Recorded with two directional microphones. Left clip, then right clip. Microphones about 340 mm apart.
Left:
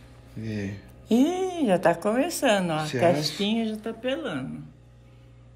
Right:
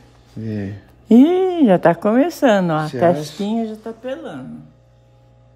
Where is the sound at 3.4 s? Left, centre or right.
Right.